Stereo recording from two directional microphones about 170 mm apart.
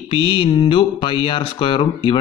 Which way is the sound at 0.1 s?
30° left (ahead or behind).